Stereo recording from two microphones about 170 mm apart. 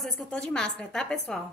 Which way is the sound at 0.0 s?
5° left (ahead or behind).